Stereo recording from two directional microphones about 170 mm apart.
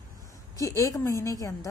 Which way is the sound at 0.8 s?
20° left (ahead or behind).